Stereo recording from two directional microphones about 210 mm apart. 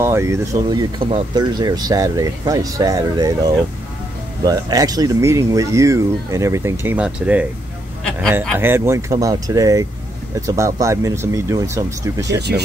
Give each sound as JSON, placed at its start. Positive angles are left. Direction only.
{"t": 0.0, "sound": "speech", "side_deg": -10}
{"t": 8.5, "sound": "speech", "side_deg": -10}
{"t": 12.4, "sound": "speech", "side_deg": -50}